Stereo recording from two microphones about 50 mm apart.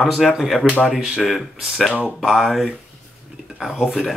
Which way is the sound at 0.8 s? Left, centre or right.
Centre.